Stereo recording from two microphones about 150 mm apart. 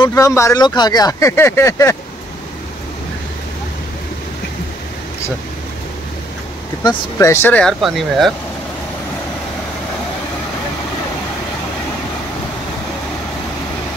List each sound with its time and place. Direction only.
0.1 s speech: 20° left (ahead or behind)
6.8 s speech: 25° left (ahead or behind)
7.8 s speech: centre (ahead or behind)